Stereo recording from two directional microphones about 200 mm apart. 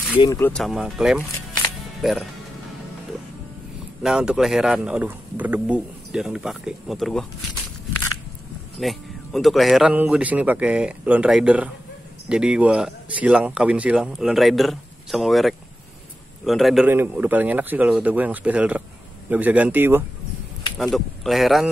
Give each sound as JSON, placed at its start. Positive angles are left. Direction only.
{"t": 0.1, "sound": "speech", "side_deg": 25}
{"t": 0.4, "sound": "speech", "side_deg": 5}
{"t": 1.8, "sound": "music", "side_deg": 0}
{"t": 4.0, "sound": "speech", "side_deg": -5}
{"t": 8.7, "sound": "a man's voice", "side_deg": 0}